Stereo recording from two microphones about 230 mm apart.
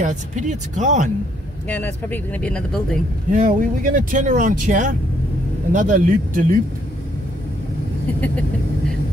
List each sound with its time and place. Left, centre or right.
0.0 s speech: right
1.7 s speech: centre
3.3 s speech: right
8.2 s vehicle: centre